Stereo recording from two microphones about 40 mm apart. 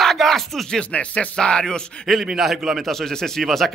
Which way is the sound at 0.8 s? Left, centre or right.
Left.